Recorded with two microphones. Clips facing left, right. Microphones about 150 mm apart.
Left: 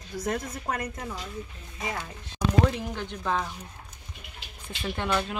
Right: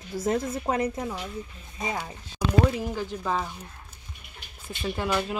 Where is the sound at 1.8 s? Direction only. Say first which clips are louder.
Right 3 dB; 15° right (ahead or behind).